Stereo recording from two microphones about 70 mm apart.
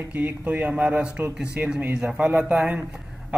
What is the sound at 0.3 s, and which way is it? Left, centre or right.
A man's voice, right.